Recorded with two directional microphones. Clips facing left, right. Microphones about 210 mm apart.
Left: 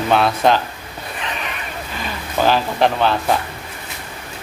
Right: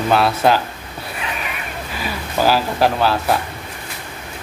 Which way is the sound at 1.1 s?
5° right (ahead or behind).